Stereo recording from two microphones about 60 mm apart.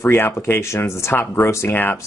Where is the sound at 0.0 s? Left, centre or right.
Left.